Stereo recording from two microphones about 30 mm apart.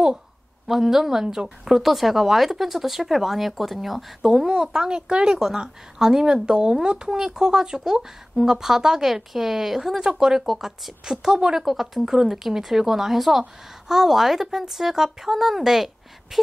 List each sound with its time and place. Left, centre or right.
0.7 s speech: centre
1.2 s speech: right
1.8 s speech: centre
4.5 s speech: right; by 10.7 s centre
11.1 s speech: right
11.6 s a woman's voice: centre